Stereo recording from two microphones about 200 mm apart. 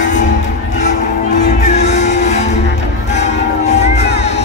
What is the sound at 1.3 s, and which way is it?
Music, 35° left (ahead or behind).